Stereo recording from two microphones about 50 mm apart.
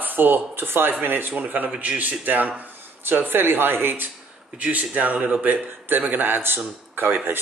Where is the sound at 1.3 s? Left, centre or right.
Right.